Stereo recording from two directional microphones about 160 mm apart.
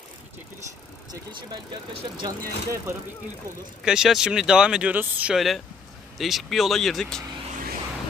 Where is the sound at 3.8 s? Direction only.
5° right (ahead or behind).